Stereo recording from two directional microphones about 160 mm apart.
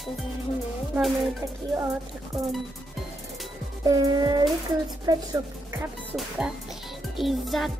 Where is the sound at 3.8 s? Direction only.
25° right (ahead or behind).